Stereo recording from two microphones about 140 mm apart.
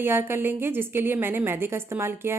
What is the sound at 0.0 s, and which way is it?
A woman's voice, 15° right (ahead or behind).